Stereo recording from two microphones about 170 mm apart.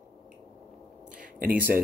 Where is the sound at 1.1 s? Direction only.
55° right (ahead or behind).